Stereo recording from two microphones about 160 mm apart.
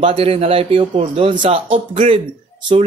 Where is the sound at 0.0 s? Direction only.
35° right (ahead or behind).